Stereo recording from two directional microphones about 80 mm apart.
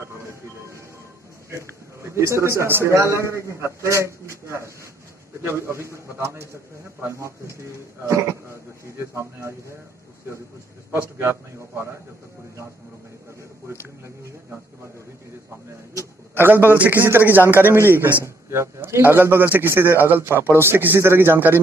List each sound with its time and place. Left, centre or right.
0.2 s train: right
1.5 s a man's voice: right
10.9 s a man's voice: right
16.3 s a man's voice: right